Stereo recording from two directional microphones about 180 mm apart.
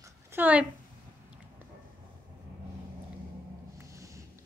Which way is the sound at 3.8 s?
15° right (ahead or behind).